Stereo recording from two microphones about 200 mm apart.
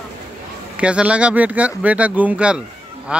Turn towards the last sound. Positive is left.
turn(degrees=-5)  # may be behind; listen again after turning